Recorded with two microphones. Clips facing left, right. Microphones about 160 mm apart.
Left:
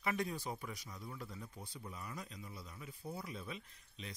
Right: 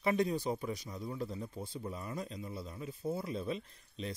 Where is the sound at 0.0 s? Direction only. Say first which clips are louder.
Right 8 dB; 25° right (ahead or behind).